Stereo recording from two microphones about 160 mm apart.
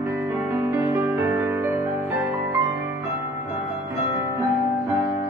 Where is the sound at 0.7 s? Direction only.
15° right (ahead or behind).